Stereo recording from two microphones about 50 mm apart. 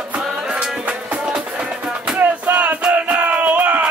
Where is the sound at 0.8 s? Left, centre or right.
Right.